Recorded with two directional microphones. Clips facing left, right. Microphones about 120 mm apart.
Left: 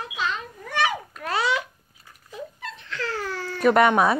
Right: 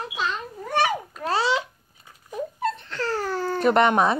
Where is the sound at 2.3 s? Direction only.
45° right (ahead or behind).